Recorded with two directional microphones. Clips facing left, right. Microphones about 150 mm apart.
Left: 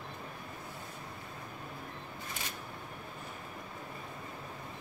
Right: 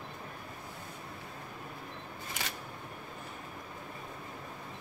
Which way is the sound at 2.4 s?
90° right.